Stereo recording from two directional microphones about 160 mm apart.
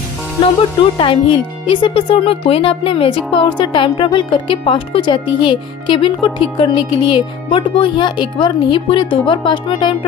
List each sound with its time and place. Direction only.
0.4 s speech: 35° left (ahead or behind)